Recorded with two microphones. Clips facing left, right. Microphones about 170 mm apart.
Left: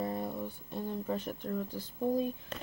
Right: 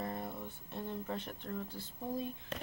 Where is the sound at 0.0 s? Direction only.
25° left (ahead or behind).